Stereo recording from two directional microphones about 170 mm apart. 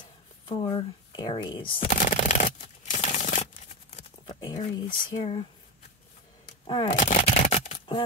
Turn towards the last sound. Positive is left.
turn(degrees=40)  # may be behind; listen again after turning